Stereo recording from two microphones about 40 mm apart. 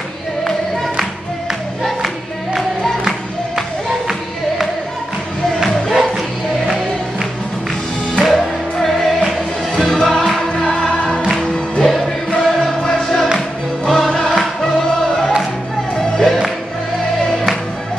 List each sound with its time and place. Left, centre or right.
5.9 s music: centre
8.2 s music: centre
9.8 s music: centre
10.5 s music: left
11.8 s music: centre